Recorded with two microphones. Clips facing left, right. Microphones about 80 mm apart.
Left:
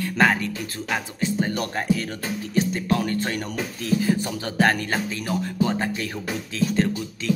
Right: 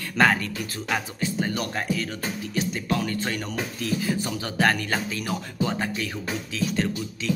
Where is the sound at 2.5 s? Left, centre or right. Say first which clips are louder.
Left 5 dB; left.